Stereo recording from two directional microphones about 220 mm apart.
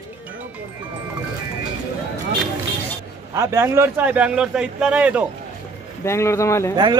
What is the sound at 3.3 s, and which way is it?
A man's voice, 15° right (ahead or behind).